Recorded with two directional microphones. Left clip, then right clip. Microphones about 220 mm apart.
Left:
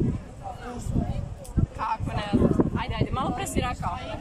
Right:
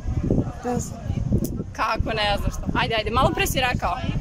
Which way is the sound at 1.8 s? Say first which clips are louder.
Right 7 dB; 45° right (ahead or behind).